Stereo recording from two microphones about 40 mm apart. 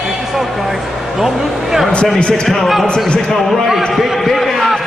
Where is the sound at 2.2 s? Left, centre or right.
Left.